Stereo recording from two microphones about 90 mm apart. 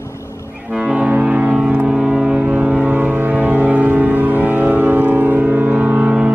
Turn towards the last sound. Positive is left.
turn(degrees=-15)  # may be behind; listen again after turning